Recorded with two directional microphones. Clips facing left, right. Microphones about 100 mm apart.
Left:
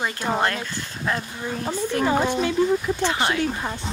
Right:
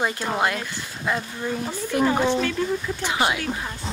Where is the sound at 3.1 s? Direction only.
15° right (ahead or behind).